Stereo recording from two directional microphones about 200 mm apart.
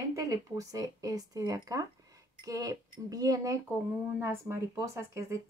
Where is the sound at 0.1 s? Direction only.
15° right (ahead or behind).